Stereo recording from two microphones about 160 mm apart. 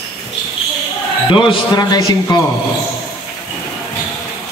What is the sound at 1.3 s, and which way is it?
A man's voice, 30° left (ahead or behind).